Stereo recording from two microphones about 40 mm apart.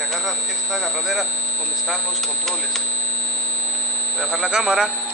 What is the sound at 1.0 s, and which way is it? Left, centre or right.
Speech, centre.